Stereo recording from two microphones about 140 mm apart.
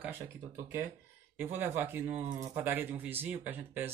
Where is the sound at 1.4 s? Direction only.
15° right (ahead or behind).